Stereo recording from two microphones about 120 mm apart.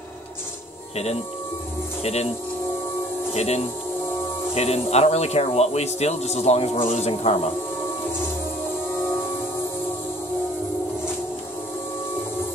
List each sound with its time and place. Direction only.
3.3 s a man's voice: 65° left (ahead or behind)